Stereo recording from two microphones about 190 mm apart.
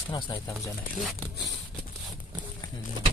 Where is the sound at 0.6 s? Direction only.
Centre (ahead or behind).